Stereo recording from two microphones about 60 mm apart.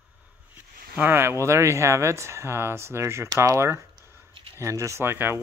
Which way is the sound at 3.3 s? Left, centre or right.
Right.